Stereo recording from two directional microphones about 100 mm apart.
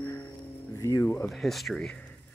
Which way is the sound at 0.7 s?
35° left (ahead or behind).